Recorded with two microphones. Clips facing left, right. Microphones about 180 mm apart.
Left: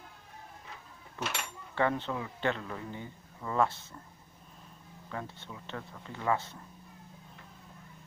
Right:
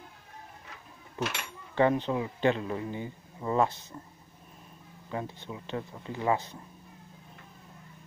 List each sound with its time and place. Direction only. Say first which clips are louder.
1.2 s a man's voice: right 3 dB; 15° right (ahead or behind)
5.1 s speech: right 5 dB; 15° right (ahead or behind)